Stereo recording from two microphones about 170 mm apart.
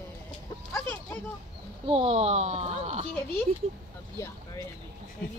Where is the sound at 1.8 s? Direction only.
35° right (ahead or behind).